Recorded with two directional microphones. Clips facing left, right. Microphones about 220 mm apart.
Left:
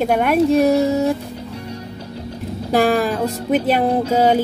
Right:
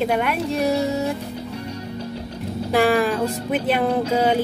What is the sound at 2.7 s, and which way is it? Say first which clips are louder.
A woman's voice: left 2 dB; 40° left (ahead or behind).